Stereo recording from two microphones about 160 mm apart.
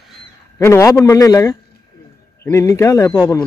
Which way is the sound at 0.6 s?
20° left (ahead or behind).